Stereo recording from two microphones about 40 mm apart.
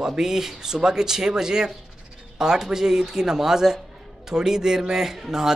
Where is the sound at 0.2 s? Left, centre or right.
Centre.